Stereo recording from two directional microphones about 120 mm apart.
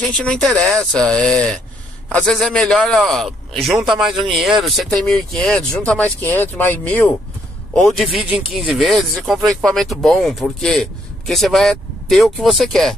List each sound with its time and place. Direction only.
0.1 s speech: 10° left (ahead or behind)
7.7 s speech: centre (ahead or behind)